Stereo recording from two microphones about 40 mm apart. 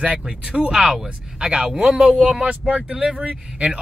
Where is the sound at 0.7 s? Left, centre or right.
Centre.